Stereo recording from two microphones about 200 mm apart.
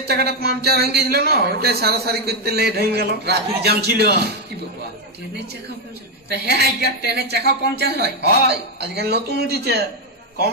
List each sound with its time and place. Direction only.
0.0 s speech: 50° right (ahead or behind)
6.2 s a woman's voice: 55° right (ahead or behind)